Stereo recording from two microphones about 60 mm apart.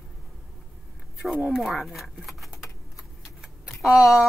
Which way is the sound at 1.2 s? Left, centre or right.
Right.